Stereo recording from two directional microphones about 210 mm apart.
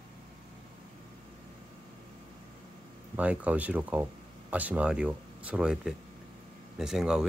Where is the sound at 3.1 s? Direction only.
5° right (ahead or behind).